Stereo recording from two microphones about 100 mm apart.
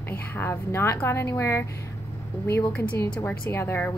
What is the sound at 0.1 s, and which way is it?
A woman's voice, 25° left (ahead or behind).